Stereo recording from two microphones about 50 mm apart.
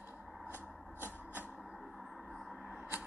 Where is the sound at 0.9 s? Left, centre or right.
Left.